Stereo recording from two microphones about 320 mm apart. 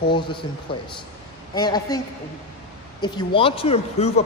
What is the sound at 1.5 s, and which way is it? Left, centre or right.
Speech, centre.